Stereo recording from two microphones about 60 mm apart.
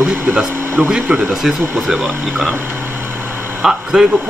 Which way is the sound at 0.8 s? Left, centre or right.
Right.